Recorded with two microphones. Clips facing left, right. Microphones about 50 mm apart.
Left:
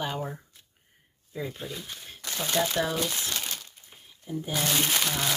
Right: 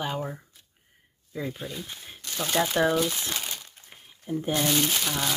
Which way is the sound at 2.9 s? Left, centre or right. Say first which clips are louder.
Right 4 dB; centre.